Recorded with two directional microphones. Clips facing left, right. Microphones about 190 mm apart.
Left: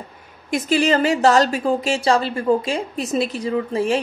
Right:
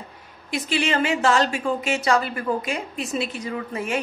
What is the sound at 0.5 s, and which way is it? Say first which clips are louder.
A woman's voice: left 6 dB; 45° left (ahead or behind).